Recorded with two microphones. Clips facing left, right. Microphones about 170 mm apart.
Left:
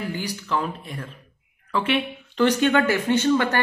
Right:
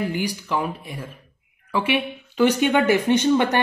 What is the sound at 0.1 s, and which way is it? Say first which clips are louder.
Speech: right 2 dB; 15° right (ahead or behind).